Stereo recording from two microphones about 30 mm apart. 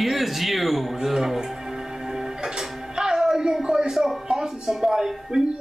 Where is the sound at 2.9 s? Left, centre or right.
Centre.